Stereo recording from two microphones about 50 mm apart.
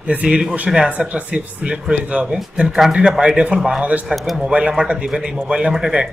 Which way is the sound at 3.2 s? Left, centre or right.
Right.